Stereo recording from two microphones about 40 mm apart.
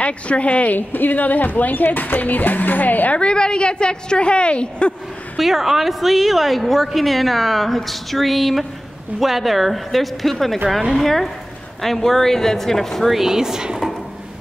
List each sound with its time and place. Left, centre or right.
0.0 s speech: left
0.7 s speech: left
3.2 s a woman's voice: left
5.4 s a woman's voice: centre
13.1 s speech: centre